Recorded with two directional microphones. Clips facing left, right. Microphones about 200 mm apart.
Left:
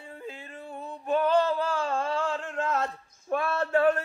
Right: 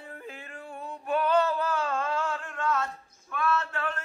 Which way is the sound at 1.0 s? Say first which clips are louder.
Left 1 dB; 25° left (ahead or behind).